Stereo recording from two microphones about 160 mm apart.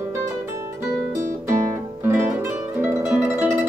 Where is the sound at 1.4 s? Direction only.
15° right (ahead or behind).